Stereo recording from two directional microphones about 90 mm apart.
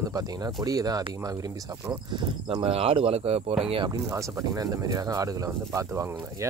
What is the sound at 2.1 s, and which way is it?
Speech, 90° right.